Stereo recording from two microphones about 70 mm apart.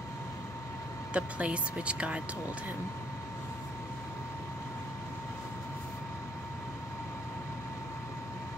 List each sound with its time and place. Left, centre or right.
1.1 s speech: centre